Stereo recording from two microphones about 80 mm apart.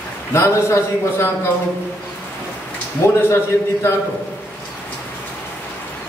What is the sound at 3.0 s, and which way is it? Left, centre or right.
Speech, left.